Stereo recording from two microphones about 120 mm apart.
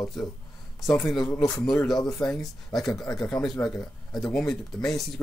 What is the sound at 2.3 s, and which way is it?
Speech, 5° left (ahead or behind).